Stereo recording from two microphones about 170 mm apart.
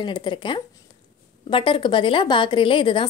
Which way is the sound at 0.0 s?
30° left (ahead or behind).